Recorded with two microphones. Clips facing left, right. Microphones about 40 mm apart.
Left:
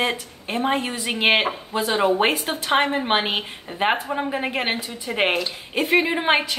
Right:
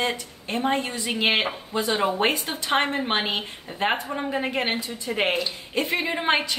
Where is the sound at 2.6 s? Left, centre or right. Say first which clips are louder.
Left 3 dB; centre.